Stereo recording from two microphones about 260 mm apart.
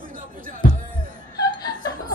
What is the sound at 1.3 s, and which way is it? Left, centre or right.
Music, centre.